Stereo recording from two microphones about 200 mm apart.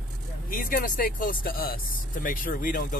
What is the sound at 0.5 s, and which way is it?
Speech, 45° left (ahead or behind).